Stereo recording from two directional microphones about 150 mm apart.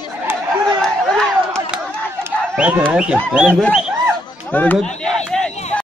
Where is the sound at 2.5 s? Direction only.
5° right (ahead or behind).